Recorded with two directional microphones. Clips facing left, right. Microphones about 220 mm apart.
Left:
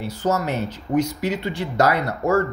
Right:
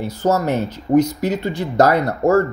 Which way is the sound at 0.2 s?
45° right (ahead or behind).